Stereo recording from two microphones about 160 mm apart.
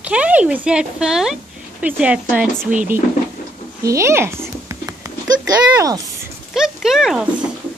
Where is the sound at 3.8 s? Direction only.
20° right (ahead or behind).